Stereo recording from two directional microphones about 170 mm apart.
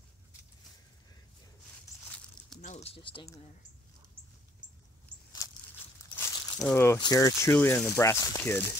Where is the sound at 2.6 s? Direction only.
45° left (ahead or behind).